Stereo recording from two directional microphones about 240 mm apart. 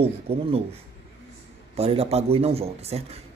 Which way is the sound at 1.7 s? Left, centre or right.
Right.